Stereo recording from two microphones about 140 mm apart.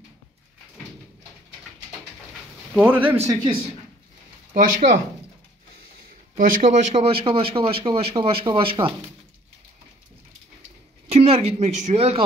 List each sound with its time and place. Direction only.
2.7 s speech: 10° right (ahead or behind)
4.6 s speech: 70° right (ahead or behind)
6.3 s speech: 70° right (ahead or behind); by 8.9 s 40° right (ahead or behind)
11.1 s speech: 45° right (ahead or behind)